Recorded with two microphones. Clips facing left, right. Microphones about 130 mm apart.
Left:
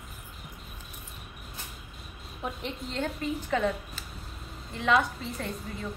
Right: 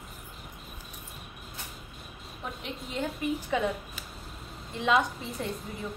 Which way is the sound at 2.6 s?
10° right (ahead or behind).